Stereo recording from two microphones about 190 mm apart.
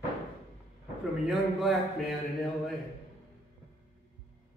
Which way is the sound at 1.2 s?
Centre (ahead or behind).